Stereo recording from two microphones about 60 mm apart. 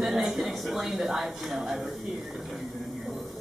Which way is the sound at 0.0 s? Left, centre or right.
Centre.